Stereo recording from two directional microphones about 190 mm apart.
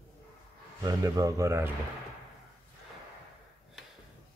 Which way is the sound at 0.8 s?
20° right (ahead or behind).